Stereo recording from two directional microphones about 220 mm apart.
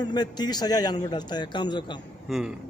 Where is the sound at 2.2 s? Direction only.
Centre (ahead or behind).